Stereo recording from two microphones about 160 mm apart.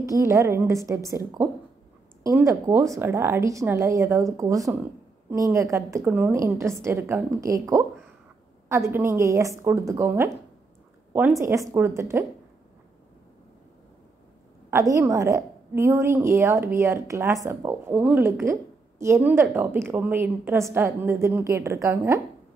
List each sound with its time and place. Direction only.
0.0 s a woman's voice: 20° right (ahead or behind)
14.7 s a woman's voice: 20° right (ahead or behind)